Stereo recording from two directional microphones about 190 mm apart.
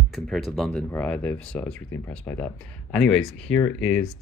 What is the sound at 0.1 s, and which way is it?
Speech, centre (ahead or behind).